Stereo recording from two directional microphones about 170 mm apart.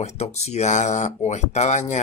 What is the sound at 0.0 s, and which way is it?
Speech, 40° left (ahead or behind).